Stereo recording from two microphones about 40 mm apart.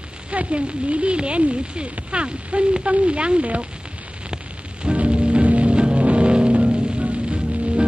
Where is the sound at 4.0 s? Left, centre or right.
Right.